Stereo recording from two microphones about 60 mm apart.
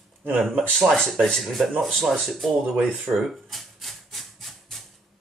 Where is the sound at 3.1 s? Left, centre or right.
Centre.